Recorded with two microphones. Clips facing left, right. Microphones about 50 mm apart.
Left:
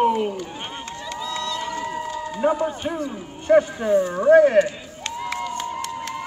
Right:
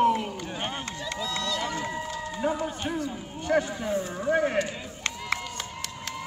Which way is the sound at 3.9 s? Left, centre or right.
Left.